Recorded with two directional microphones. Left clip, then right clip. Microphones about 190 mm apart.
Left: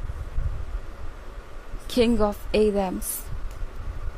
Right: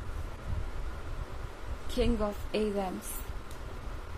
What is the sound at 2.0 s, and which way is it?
Speech, 50° left (ahead or behind).